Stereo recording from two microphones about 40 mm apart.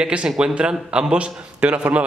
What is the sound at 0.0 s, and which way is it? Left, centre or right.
A man's voice, right.